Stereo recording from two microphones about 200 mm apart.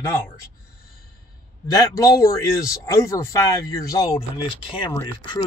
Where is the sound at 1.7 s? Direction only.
15° left (ahead or behind).